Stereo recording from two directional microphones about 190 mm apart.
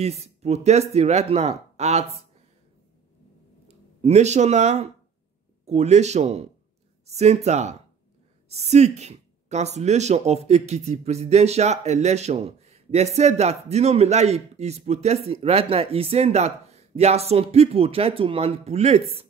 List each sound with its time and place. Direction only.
0.0 s speech: 35° right (ahead or behind)
3.6 s speech: 35° right (ahead or behind)